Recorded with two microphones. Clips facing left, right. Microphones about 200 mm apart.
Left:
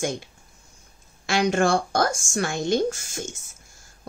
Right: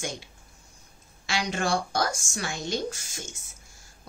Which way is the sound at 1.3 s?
50° left (ahead or behind).